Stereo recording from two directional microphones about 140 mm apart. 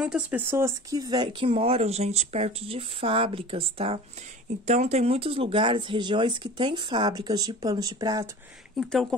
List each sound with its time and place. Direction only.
0.0 s speech: 10° right (ahead or behind); by 8.3 s 30° right (ahead or behind)
8.7 s speech: 5° left (ahead or behind)